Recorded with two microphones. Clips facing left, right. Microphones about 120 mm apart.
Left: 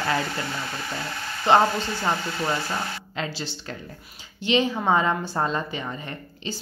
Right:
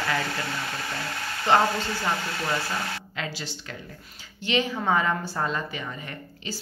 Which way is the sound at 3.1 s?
30° left (ahead or behind).